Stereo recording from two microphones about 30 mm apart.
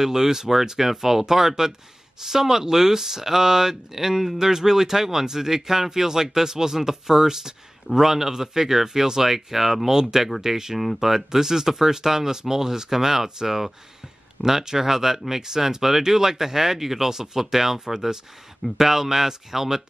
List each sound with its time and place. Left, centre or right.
0.0 s speech: centre